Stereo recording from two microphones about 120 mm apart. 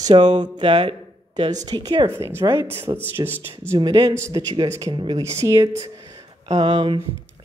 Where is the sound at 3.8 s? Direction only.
45° right (ahead or behind).